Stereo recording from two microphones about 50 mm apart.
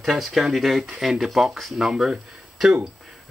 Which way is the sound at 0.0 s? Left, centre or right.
Centre.